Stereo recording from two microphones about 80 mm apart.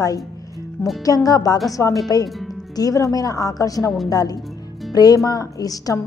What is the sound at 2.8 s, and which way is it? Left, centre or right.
Speech, left.